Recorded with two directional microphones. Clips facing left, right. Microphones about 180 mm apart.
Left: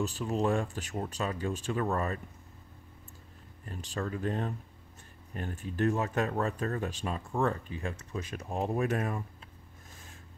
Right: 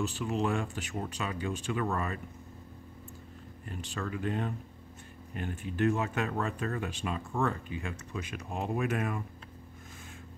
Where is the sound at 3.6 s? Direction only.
35° left (ahead or behind).